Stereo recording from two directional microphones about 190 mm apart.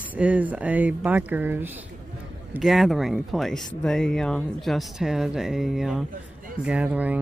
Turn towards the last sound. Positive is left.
turn(degrees=-5)  # may be behind; listen again after turning